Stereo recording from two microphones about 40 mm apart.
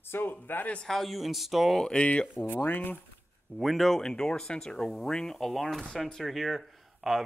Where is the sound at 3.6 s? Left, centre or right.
Centre.